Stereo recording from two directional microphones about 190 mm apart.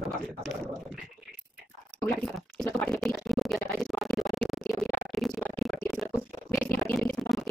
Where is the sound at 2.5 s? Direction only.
5° left (ahead or behind).